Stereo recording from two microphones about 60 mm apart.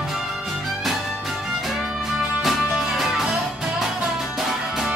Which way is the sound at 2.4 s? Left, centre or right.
Centre.